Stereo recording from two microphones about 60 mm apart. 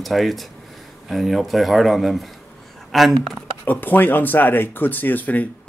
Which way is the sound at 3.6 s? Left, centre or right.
Left.